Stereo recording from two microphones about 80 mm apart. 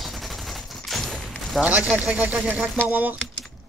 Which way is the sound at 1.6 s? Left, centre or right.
Centre.